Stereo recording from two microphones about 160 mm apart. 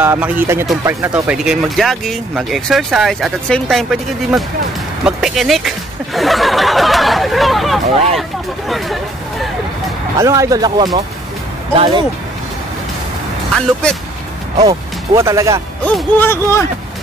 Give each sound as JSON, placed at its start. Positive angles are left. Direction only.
{"t": 0.0, "sound": "speech", "side_deg": -10}
{"t": 5.0, "sound": "a sound", "side_deg": 0}
{"t": 8.2, "sound": "hubbub", "side_deg": 0}
{"t": 10.1, "sound": "speech", "side_deg": -20}
{"t": 11.7, "sound": "speech", "side_deg": -35}
{"t": 14.6, "sound": "speech", "side_deg": -20}
{"t": 15.8, "sound": "speech", "side_deg": 10}